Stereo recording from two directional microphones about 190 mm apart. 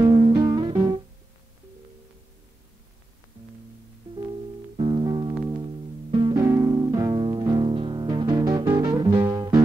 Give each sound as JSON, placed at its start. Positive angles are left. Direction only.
{"t": 0.3, "sound": "music", "side_deg": -20}
{"t": 4.1, "sound": "music", "side_deg": -25}